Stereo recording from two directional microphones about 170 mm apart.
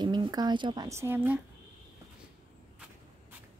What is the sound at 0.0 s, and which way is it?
Speech, 25° right (ahead or behind).